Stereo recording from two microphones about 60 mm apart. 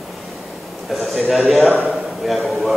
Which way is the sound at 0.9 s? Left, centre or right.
Centre.